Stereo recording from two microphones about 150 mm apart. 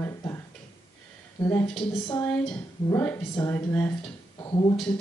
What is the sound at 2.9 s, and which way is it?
Speech, 15° left (ahead or behind).